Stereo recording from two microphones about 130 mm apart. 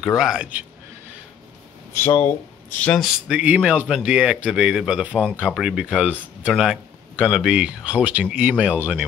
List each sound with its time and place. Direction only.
0.0 s a man's voice: centre (ahead or behind)
2.0 s speech: 20° left (ahead or behind)
2.8 s speech: 5° left (ahead or behind)
3.3 s speech: 10° right (ahead or behind)